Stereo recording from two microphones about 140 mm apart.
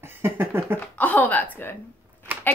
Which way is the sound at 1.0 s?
10° left (ahead or behind).